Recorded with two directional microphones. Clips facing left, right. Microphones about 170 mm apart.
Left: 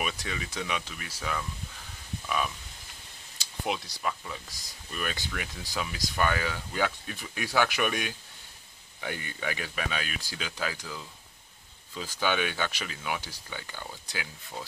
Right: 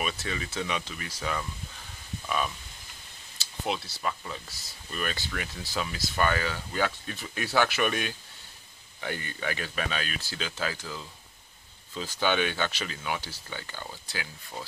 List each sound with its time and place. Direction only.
0.0 s speech: 10° left (ahead or behind)